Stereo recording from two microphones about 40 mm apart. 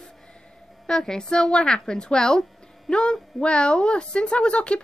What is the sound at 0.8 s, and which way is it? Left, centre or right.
Speech, centre.